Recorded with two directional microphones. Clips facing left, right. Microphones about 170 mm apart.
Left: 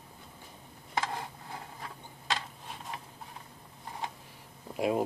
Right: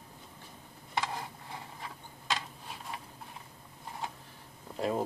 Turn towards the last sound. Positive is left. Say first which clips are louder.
# left 3 dB
turn(degrees=15)  # may be behind; listen again after turning